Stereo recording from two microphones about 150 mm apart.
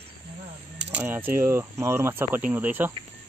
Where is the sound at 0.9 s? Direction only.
15° right (ahead or behind).